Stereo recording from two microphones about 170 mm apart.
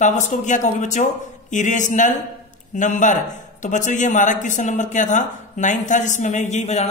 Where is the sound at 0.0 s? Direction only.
45° left (ahead or behind).